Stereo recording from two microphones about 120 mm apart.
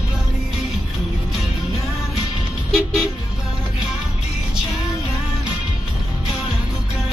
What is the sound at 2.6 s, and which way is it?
Vehicle, centre (ahead or behind).